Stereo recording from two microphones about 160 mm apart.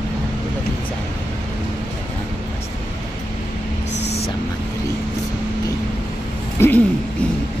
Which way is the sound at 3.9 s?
90° left.